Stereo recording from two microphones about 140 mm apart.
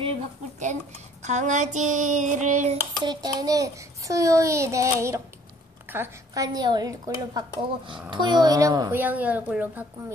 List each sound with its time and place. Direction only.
1.2 s a sound: 60° right (ahead or behind)
3.0 s speech: 30° right (ahead or behind)
8.9 s a woman's voice: 10° right (ahead or behind)